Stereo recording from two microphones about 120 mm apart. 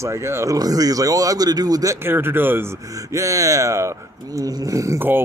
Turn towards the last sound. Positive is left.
turn(degrees=-15)  # may be behind; listen again after turning